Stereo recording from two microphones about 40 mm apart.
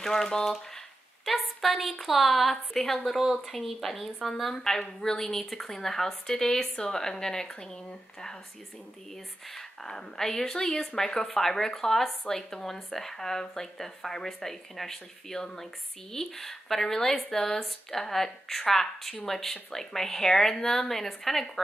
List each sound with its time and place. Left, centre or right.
0.0 s speech: centre
1.2 s a woman's voice: centre